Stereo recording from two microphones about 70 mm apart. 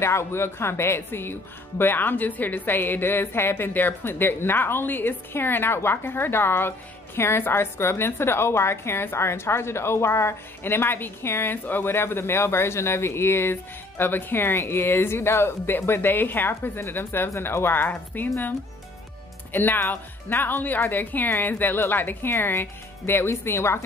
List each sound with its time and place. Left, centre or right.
0.0 s a woman's voice: left
19.5 s a woman's voice: left